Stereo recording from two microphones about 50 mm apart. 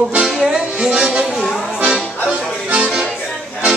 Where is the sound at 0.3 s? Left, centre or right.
Centre.